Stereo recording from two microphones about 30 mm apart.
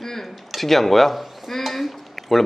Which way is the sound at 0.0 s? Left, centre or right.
Centre.